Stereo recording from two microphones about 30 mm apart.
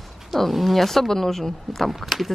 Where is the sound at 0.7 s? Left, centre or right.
Centre.